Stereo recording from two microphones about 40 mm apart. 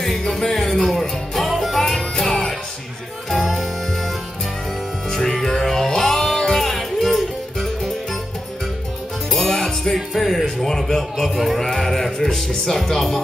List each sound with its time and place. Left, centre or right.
0.0 s music: centre
2.0 s music: centre
5.1 s music: centre
6.5 s music: centre
9.3 s music: centre
9.9 s music: centre
11.9 s speech: centre